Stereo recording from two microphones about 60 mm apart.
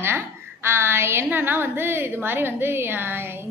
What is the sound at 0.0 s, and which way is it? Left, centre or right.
A woman's voice, right.